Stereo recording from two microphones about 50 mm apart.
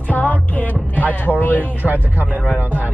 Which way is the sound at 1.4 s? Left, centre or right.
Left.